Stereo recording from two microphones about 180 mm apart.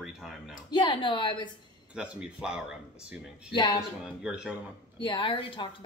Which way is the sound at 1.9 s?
5° right (ahead or behind).